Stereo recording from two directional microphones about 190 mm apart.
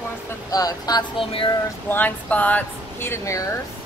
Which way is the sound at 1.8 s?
10° left (ahead or behind).